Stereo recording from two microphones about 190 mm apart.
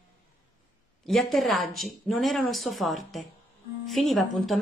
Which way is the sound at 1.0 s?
Centre (ahead or behind).